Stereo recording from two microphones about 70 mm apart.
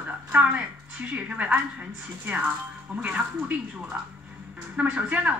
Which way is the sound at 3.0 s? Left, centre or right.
Centre.